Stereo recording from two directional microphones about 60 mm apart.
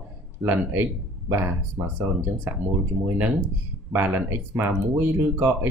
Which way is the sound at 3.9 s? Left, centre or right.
Right.